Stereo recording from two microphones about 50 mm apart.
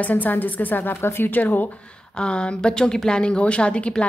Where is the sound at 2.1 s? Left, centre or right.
Centre.